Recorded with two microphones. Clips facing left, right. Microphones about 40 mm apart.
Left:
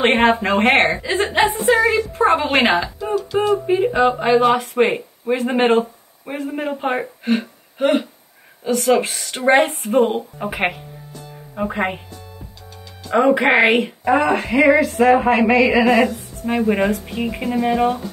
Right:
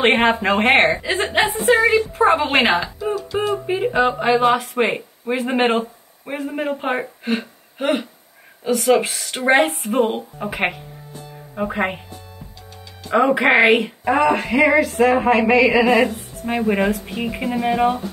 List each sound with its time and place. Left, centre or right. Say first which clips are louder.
0.0 s speech: left 1 dB; centre
1.7 s a woman's voice: right 3 dB; right
2.1 s speech: even; centre
11.2 s music: even; centre
13.1 s speech: left 1 dB; centre